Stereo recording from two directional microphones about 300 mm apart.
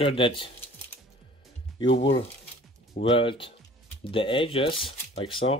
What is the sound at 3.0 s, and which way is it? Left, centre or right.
Speech, centre.